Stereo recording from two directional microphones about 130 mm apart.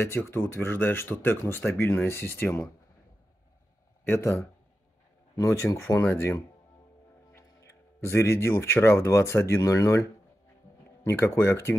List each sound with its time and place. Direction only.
0.0 s speech: 15° left (ahead or behind)
4.0 s a man's voice: 20° left (ahead or behind)
11.1 s speech: 20° left (ahead or behind)